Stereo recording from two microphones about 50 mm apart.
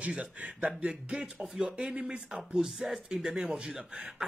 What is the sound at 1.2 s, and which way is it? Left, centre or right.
Speech, centre.